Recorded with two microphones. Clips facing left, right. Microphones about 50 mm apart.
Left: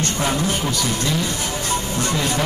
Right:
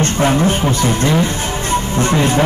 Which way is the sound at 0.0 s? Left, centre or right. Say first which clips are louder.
Right 7 dB; right.